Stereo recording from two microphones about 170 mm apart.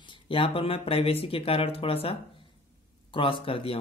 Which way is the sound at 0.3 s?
30° left (ahead or behind).